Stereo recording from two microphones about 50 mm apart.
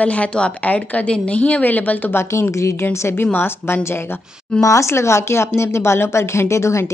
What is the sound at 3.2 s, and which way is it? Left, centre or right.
Speech, left.